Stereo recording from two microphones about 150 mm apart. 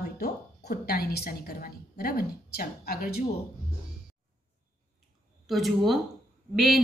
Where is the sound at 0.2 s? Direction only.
90° left.